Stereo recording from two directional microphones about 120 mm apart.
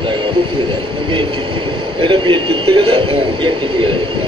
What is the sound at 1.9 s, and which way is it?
A man's voice, 45° right (ahead or behind).